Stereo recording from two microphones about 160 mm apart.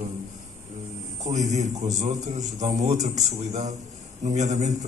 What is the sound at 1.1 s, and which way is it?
A man's voice, 45° right (ahead or behind).